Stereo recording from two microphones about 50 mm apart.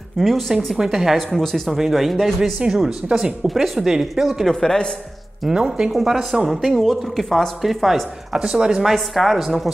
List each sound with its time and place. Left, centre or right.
0.2 s a woman's voice: centre
0.7 s speech: centre
1.1 s a woman's voice: centre
2.6 s speech: centre
3.4 s speech: centre
4.6 s speech: centre
5.5 s speech: centre
5.9 s a woman's voice: centre
8.4 s speech: centre
8.9 s a woman's voice: centre